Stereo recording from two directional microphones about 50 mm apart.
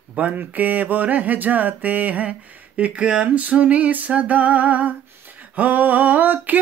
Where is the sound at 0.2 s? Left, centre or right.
Right.